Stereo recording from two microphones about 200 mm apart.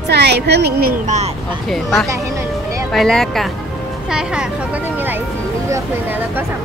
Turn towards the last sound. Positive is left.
turn(degrees=-10)  # may be behind; listen again after turning